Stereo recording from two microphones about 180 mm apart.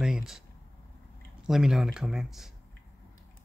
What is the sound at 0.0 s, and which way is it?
Speech, 5° right (ahead or behind).